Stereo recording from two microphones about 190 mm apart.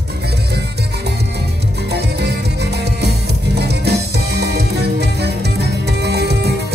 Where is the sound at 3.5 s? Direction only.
60° right (ahead or behind).